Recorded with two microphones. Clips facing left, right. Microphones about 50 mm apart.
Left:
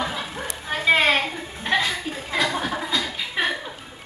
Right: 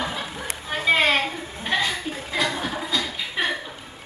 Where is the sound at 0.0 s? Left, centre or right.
Centre.